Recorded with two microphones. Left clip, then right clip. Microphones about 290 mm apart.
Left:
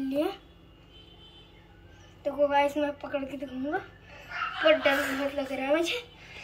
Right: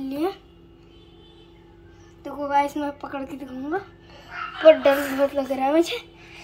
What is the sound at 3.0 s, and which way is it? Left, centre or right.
Speech, centre.